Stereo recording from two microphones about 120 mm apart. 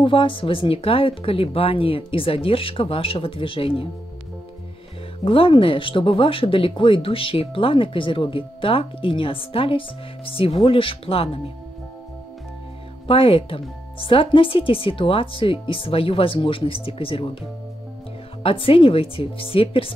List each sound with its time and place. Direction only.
0.0 s speech: 45° left (ahead or behind)
5.2 s speech: 45° left (ahead or behind)
13.0 s speech: 50° left (ahead or behind)